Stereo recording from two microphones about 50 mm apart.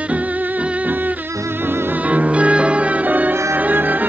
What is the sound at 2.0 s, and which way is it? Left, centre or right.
Music, right.